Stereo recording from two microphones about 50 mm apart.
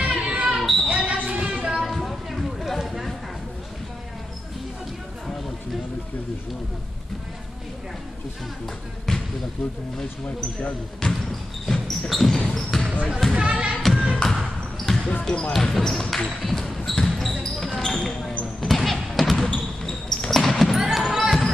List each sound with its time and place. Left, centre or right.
0.1 s basketball bounce: centre
0.6 s basketball bounce: centre
1.2 s a sound: centre
10.6 s speech: centre
11.6 s basketball bounce: centre
13.0 s speech: centre
13.5 s music: centre
13.8 s music: centre
14.3 s basketball bounce: centre
15.9 s speech: centre
16.4 s basketball bounce: centre